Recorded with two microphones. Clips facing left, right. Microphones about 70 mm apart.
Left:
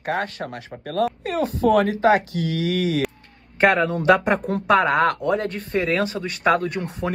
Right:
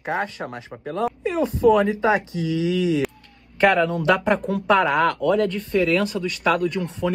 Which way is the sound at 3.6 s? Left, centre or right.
Left.